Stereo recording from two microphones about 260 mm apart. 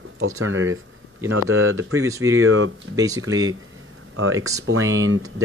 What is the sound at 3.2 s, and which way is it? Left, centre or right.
Speech, right.